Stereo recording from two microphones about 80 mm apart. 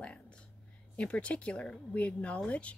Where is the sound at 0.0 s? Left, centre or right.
Centre.